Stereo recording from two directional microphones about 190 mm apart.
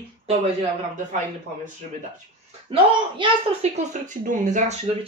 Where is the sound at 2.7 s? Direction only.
25° right (ahead or behind).